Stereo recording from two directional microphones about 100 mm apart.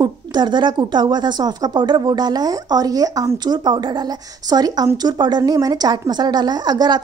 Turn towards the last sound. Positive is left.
turn(degrees=-45)  # may be behind; listen again after turning